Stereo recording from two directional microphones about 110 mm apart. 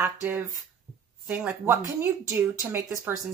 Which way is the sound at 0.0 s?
20° right (ahead or behind).